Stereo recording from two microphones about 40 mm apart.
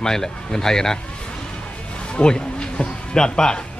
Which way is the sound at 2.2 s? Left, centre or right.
Centre.